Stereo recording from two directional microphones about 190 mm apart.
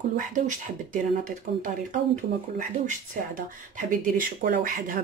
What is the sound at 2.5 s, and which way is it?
Speech, 45° right (ahead or behind).